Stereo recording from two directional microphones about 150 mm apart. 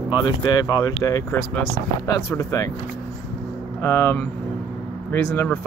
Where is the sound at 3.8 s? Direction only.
15° left (ahead or behind).